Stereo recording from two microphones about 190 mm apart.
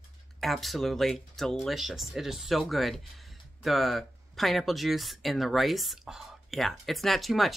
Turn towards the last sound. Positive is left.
turn(degrees=0)  # may be behind; listen again after turning